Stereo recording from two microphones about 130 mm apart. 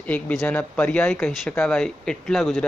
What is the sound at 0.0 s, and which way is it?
Speech, 10° left (ahead or behind).